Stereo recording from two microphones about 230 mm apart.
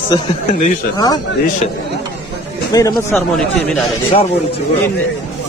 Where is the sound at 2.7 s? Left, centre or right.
Centre.